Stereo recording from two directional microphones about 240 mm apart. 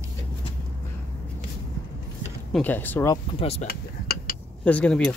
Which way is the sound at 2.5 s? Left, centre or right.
Centre.